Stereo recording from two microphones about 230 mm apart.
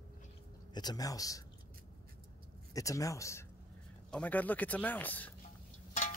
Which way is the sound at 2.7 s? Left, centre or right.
Centre.